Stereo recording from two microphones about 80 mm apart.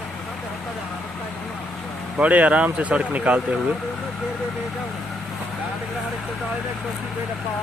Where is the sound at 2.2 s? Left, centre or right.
Centre.